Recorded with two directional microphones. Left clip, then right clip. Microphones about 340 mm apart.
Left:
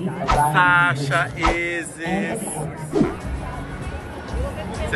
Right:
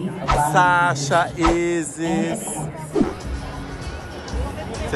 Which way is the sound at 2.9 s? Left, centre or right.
Centre.